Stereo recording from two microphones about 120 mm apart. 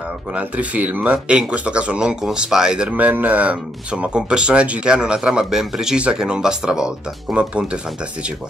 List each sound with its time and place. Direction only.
0.3 s speech: 10° right (ahead or behind)